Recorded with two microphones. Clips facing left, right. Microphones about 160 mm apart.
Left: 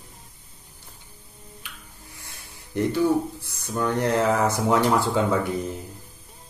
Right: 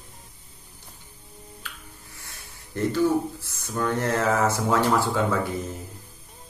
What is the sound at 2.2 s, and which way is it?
Speech, 15° left (ahead or behind).